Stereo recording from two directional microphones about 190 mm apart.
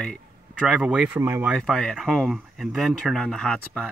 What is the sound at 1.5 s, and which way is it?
Speech, centre (ahead or behind).